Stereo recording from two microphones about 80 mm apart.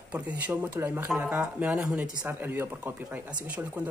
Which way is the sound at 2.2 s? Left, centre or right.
Right.